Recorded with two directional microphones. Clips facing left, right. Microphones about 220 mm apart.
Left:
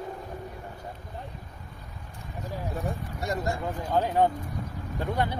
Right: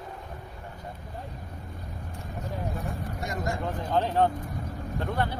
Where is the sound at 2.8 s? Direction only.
35° left (ahead or behind).